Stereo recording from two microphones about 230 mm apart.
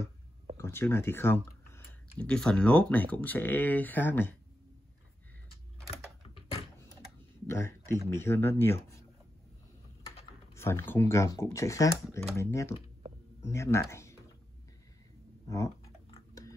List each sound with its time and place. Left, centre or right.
0.6 s speech: centre
7.4 s a man's voice: centre
10.5 s speech: centre
15.4 s a sound: centre